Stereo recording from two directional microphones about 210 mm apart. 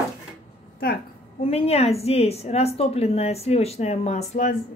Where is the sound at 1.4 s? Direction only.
30° left (ahead or behind).